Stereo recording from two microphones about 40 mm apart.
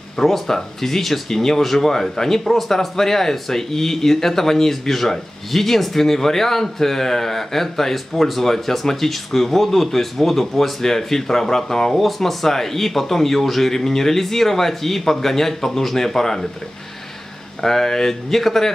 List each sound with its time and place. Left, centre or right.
0.2 s speech: centre
17.6 s speech: centre